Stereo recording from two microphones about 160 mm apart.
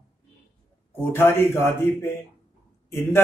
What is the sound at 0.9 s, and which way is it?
Speech, 15° left (ahead or behind).